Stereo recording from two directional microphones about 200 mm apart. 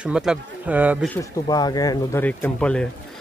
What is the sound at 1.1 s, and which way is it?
A man's voice, 15° left (ahead or behind).